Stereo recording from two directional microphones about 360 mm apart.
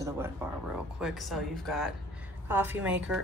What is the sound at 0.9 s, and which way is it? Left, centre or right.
Speech, centre.